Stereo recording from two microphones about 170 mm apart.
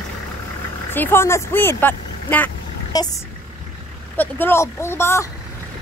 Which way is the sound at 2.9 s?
20° left (ahead or behind).